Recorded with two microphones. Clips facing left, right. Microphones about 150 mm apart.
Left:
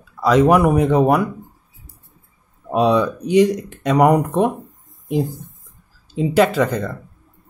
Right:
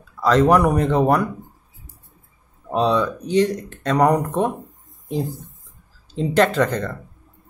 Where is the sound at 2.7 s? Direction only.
10° left (ahead or behind).